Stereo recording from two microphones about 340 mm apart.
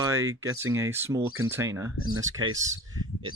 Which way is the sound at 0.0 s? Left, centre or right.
Centre.